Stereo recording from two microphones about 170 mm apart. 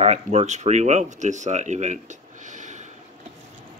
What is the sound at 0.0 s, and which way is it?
Speech, 40° right (ahead or behind).